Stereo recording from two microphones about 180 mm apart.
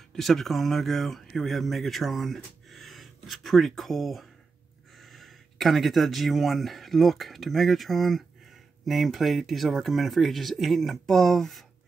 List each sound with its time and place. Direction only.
0.1 s speech: centre (ahead or behind)